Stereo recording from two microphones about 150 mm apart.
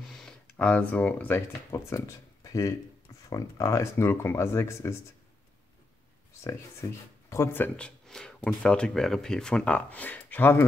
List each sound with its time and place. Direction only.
0.0 s a sound: centre (ahead or behind)
0.6 s speech: 10° left (ahead or behind)
6.8 s speech: 20° left (ahead or behind)